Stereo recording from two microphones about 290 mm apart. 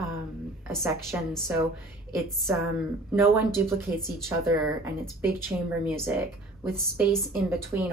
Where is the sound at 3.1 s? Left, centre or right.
Centre.